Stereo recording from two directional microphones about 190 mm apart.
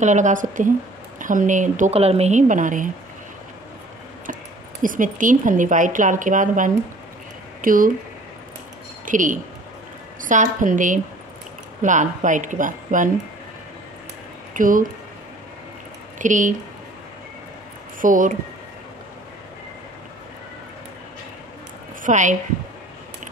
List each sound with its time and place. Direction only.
0.0 s speech: 40° right (ahead or behind)
4.8 s speech: 45° right (ahead or behind)
9.0 s speech: 45° right (ahead or behind)
14.5 s speech: 45° right (ahead or behind)
16.2 s speech: 40° right (ahead or behind)
18.0 s speech: 45° right (ahead or behind)
22.0 s a woman's voice: 40° right (ahead or behind)